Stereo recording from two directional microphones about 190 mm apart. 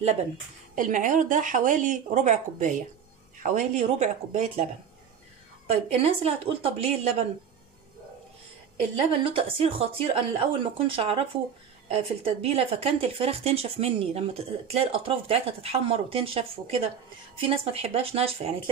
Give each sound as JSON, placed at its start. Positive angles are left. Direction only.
{"t": 0.7, "sound": "speech", "side_deg": -40}
{"t": 5.7, "sound": "speech", "side_deg": -30}
{"t": 8.9, "sound": "speech", "side_deg": -30}